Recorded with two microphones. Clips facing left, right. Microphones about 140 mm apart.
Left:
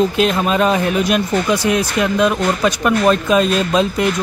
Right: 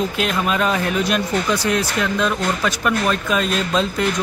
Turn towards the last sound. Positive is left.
turn(degrees=15)  # may be behind; listen again after turning